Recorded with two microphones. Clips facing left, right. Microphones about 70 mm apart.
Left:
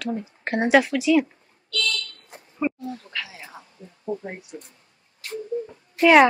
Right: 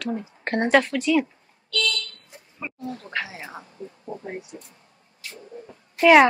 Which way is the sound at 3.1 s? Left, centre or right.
Right.